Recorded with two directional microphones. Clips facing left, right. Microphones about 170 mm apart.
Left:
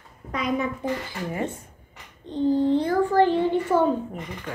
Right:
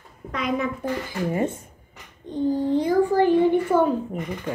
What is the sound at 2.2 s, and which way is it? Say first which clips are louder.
A child's voice: left 2 dB; 10° right (ahead or behind).